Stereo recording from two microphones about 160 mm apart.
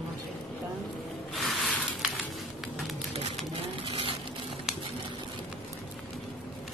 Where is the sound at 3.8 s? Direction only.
35° right (ahead or behind).